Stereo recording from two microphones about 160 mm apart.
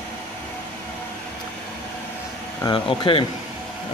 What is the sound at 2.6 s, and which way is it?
Speech, 30° left (ahead or behind).